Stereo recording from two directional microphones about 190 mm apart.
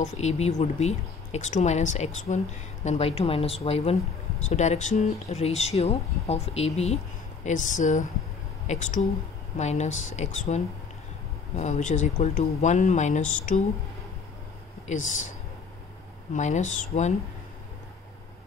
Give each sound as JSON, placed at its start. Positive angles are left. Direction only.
{"t": 0.0, "sound": "speech", "side_deg": 35}
{"t": 16.3, "sound": "speech", "side_deg": 40}